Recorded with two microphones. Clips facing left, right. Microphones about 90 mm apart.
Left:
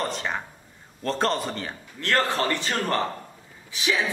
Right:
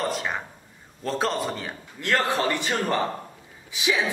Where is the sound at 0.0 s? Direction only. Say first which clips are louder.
Right 1 dB; 5° right (ahead or behind).